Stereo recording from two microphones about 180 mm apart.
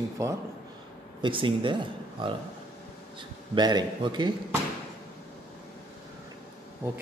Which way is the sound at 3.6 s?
25° right (ahead or behind).